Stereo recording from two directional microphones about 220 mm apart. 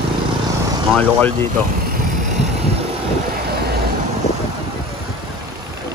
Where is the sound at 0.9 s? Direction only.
5° left (ahead or behind).